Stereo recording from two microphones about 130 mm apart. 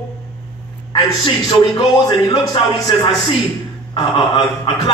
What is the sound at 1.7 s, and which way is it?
Speech, 35° left (ahead or behind).